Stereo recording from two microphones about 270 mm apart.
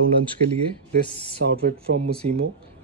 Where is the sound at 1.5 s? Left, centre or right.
Right.